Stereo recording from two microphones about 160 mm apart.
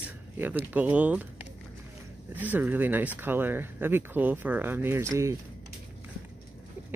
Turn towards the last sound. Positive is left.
turn(degrees=-15)  # may be behind; listen again after turning